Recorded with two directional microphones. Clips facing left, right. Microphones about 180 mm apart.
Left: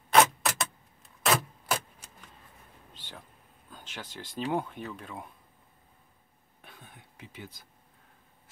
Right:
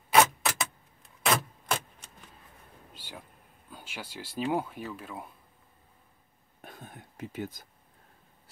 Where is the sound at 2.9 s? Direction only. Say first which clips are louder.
Right 2 dB; 10° right (ahead or behind).